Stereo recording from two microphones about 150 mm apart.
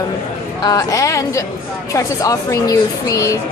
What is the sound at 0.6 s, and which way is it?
A woman's voice, 25° left (ahead or behind).